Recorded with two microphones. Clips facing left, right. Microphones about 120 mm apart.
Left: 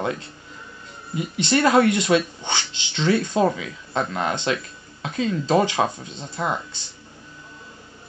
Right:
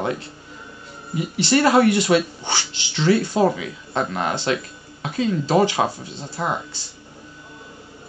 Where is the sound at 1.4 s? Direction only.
5° right (ahead or behind).